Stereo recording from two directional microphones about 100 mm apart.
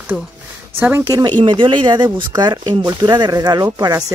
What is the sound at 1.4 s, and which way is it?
Speech, 50° right (ahead or behind).